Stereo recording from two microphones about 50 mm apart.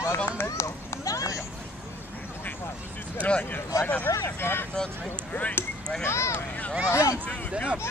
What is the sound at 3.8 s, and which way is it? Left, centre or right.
Speech, left.